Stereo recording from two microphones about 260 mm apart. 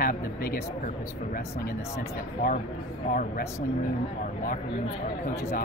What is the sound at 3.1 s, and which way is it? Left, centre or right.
Speech, left.